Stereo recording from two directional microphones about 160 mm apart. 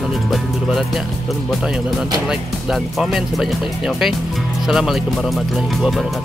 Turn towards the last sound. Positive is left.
turn(degrees=0)  # may be behind; listen again after turning